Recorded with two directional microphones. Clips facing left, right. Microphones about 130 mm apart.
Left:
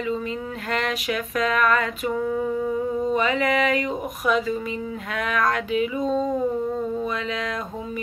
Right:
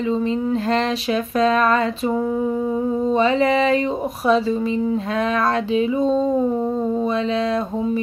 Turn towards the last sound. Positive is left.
turn(degrees=-30)  # may be behind; listen again after turning